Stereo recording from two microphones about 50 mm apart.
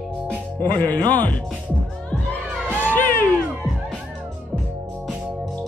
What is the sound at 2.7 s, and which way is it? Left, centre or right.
Music, left.